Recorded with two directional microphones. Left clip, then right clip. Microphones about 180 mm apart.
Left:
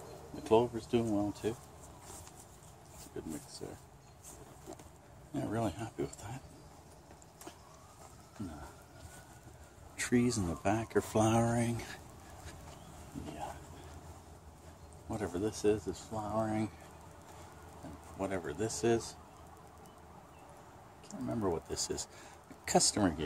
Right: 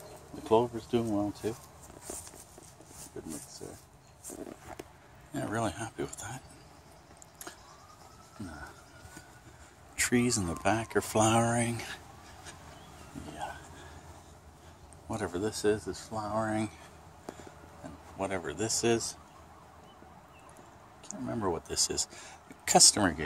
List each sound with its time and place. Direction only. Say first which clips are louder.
0.4 s speech: right 2 dB; 35° right (ahead or behind)
3.6 s speech: even; 20° right (ahead or behind)
5.3 s speech: right 3 dB; 5° right (ahead or behind)
9.9 s speech: right 4 dB; 15° right (ahead or behind); by 12.0 s centre (ahead or behind)
15.0 s speech: right 3 dB; 20° right (ahead or behind)
18.2 s speech: right 3 dB; 30° right (ahead or behind)
21.1 s speech: right 2 dB; 15° right (ahead or behind)